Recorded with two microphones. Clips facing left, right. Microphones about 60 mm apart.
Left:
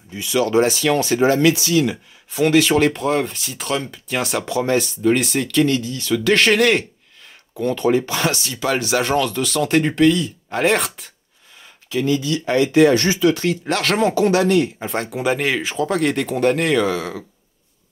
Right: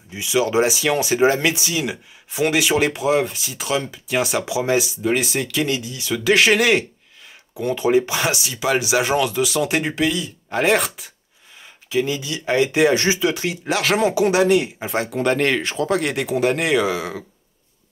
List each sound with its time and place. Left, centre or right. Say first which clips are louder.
0.1 s speech: left 1 dB; centre
11.9 s speech: left 3 dB; centre
14.9 s speech: right 1 dB; centre